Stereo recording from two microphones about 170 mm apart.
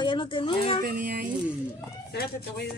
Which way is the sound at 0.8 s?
55° right (ahead or behind).